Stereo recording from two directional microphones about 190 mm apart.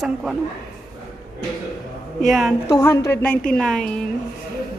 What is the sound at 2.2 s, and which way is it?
Speech, centre (ahead or behind).